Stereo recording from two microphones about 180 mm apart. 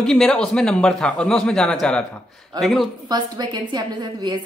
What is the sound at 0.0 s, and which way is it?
Speech, 5° left (ahead or behind).